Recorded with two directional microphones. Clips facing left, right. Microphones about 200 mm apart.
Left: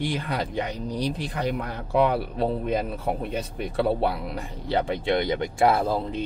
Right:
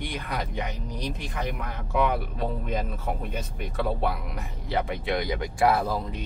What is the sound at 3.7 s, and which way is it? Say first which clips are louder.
Speech: left 4 dB; 30° left (ahead or behind).